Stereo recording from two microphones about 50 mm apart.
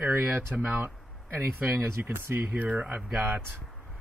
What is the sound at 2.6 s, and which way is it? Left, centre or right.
Speech, right.